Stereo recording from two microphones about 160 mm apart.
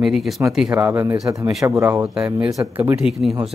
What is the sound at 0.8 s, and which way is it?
Speech, 20° right (ahead or behind).